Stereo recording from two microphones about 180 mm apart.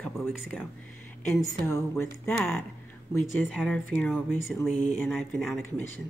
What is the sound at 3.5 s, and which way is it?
Speech, 5° left (ahead or behind).